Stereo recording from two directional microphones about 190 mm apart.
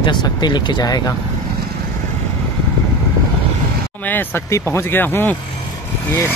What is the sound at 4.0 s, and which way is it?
Speech, 10° left (ahead or behind).